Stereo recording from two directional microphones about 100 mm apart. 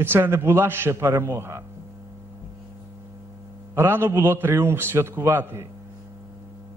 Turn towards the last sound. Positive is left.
turn(degrees=-25)  # may be behind; listen again after turning